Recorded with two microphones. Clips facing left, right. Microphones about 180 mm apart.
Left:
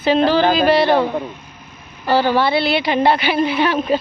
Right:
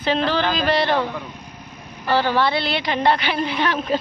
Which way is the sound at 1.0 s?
30° left (ahead or behind).